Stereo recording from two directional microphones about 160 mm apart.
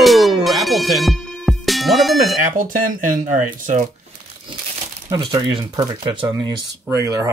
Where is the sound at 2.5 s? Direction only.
55° right (ahead or behind).